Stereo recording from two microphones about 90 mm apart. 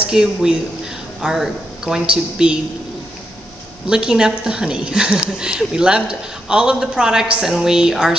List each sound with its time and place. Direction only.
0.0 s speech: 5° right (ahead or behind)
3.9 s speech: 10° right (ahead or behind)